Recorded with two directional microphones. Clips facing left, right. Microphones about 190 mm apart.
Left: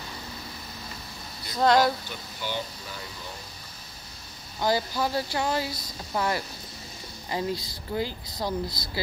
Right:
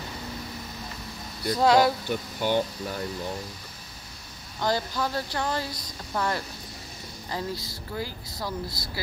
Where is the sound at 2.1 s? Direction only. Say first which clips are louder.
Right 8 dB; 55° right (ahead or behind).